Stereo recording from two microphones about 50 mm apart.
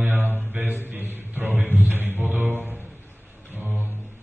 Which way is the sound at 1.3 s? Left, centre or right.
Right.